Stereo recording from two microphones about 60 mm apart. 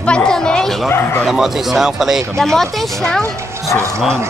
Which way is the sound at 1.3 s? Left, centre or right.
Centre.